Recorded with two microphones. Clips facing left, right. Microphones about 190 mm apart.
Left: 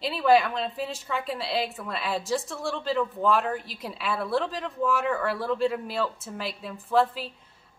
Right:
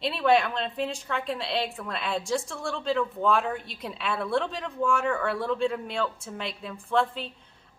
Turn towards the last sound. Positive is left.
turn(degrees=5)  # may be behind; listen again after turning